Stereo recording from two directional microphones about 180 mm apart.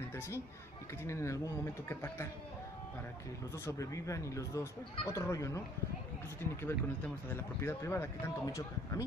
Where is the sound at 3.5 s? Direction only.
15° left (ahead or behind).